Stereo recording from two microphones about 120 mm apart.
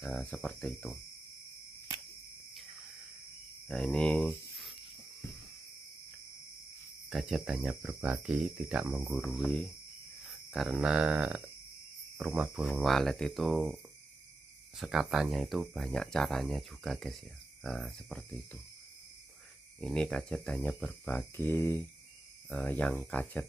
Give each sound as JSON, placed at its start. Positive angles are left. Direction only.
{"t": 0.2, "sound": "speech", "side_deg": 5}
{"t": 3.6, "sound": "speech", "side_deg": 0}
{"t": 7.1, "sound": "speech", "side_deg": 0}
{"t": 7.8, "sound": "speech", "side_deg": -15}
{"t": 14.8, "sound": "speech", "side_deg": -5}
{"t": 19.8, "sound": "speech", "side_deg": 5}
{"t": 21.1, "sound": "speech", "side_deg": 15}